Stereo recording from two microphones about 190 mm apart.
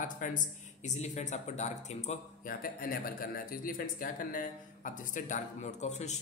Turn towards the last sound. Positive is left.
turn(degrees=35)  # may be behind; listen again after turning